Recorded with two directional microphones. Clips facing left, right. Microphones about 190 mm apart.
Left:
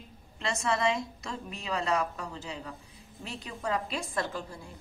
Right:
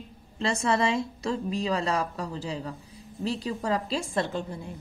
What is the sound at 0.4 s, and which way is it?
A woman's voice, 30° right (ahead or behind).